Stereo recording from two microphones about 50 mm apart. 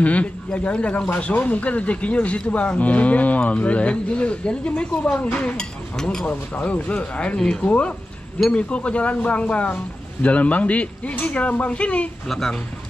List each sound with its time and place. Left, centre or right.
0.0 s speech: left
12.3 s speech: centre